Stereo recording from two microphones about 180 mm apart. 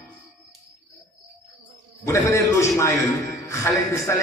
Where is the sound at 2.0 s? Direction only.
15° left (ahead or behind).